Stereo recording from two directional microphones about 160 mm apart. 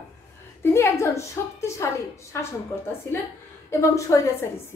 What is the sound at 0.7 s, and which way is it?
A woman's voice, 15° left (ahead or behind).